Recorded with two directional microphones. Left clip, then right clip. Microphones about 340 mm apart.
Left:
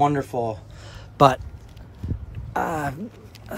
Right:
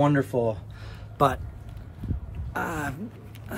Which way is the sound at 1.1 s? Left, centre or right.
Left.